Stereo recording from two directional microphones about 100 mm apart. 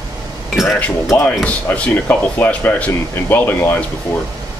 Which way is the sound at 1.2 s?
15° left (ahead or behind).